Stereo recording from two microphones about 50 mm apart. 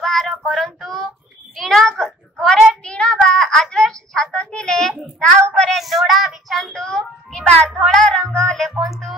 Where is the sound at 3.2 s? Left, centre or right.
Centre.